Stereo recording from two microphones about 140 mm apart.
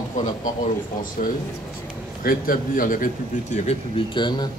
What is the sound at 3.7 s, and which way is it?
Speech, 40° left (ahead or behind).